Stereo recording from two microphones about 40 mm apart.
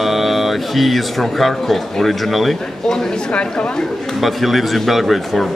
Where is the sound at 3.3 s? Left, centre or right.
Left.